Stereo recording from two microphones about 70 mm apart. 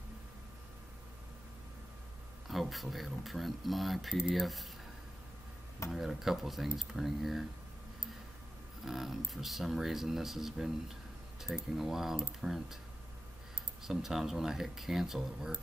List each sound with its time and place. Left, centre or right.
2.4 s speech: centre
5.9 s speech: centre
8.8 s speech: centre
13.8 s speech: centre